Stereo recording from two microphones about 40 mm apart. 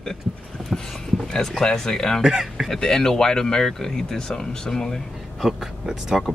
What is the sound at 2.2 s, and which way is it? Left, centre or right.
Music, centre.